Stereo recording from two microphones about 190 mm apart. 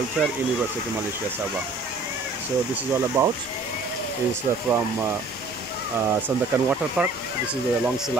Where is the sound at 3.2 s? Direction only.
15° right (ahead or behind).